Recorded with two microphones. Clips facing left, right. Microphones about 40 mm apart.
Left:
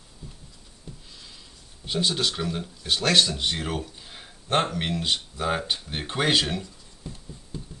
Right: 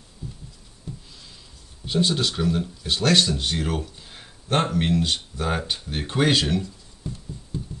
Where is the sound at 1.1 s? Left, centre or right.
Centre.